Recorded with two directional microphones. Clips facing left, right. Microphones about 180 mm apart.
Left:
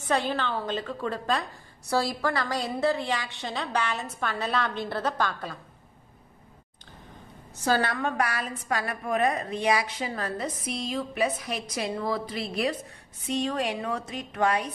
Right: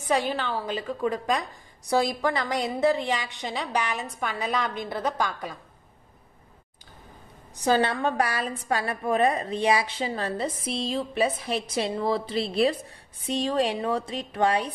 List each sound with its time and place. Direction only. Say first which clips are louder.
0.0 s a woman's voice: right 1 dB; 10° right (ahead or behind)
7.5 s a woman's voice: right 3 dB; 20° right (ahead or behind)